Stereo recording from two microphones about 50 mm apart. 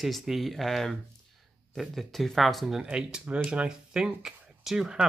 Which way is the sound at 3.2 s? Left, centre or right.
Right.